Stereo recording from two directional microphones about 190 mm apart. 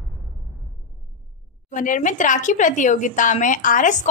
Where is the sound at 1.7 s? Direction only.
40° left (ahead or behind).